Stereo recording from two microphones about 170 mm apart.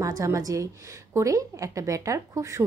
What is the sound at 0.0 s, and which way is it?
A woman's voice, 20° right (ahead or behind).